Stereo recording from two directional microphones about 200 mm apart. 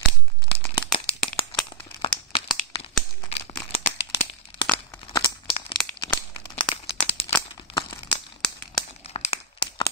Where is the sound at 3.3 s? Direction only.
30° left (ahead or behind).